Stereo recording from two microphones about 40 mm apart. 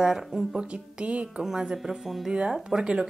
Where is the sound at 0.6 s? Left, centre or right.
Right.